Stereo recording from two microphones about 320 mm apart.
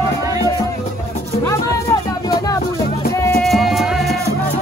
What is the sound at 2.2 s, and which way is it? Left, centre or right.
Music, centre.